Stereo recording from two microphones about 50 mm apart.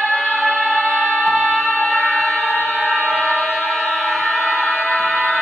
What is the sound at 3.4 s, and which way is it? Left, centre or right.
Music, centre.